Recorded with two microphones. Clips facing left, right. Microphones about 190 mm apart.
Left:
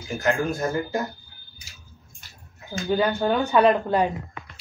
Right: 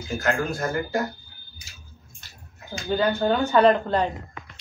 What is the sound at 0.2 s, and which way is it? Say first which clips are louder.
Speech: left 2 dB; 20° left (ahead or behind).